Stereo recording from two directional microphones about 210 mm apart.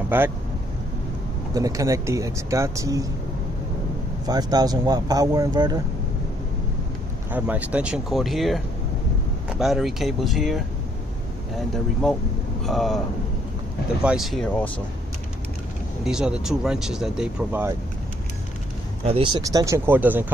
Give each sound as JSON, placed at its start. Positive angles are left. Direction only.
{"t": 0.1, "sound": "speech", "side_deg": -10}
{"t": 1.5, "sound": "speech", "side_deg": -15}
{"t": 4.3, "sound": "speech", "side_deg": -20}
{"t": 7.2, "sound": "speech", "side_deg": -5}
{"t": 11.7, "sound": "speech", "side_deg": 0}
{"t": 14.0, "sound": "speech", "side_deg": 0}
{"t": 16.0, "sound": "speech", "side_deg": -5}
{"t": 19.0, "sound": "speech", "side_deg": -25}